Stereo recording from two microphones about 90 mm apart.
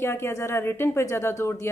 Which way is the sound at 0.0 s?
30° left (ahead or behind).